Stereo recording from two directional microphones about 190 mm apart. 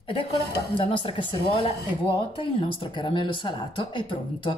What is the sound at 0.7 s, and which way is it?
Speech, 25° left (ahead or behind).